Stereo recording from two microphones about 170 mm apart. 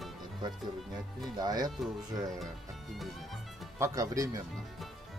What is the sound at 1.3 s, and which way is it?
Speech, 25° right (ahead or behind).